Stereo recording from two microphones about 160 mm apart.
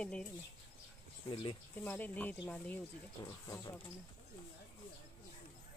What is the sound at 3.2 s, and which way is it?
Speech, 25° left (ahead or behind).